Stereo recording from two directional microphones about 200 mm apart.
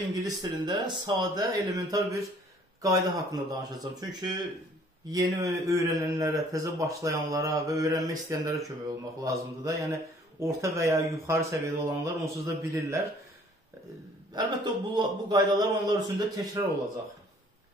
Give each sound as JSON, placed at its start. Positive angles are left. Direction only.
{"t": 0.1, "sound": "a man's voice", "side_deg": -20}
{"t": 14.3, "sound": "a man's voice", "side_deg": -20}